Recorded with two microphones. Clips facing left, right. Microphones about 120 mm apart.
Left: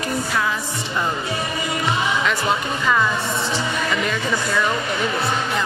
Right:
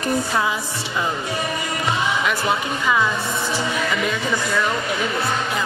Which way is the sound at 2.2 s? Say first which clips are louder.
Even; centre (ahead or behind).